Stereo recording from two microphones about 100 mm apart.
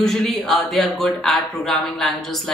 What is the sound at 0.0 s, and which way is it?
A woman's voice, 5° left (ahead or behind).